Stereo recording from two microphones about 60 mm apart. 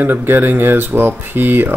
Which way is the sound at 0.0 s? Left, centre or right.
Right.